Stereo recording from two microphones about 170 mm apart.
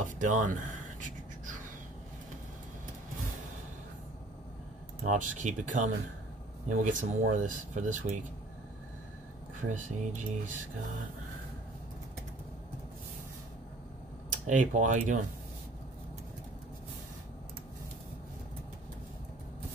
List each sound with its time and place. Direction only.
0.0 s speech: 50° right (ahead or behind)
1.0 s a sound: 50° right (ahead or behind)
5.0 s speech: 45° right (ahead or behind)
9.7 s speech: 50° right (ahead or behind)
14.3 s speech: 50° right (ahead or behind)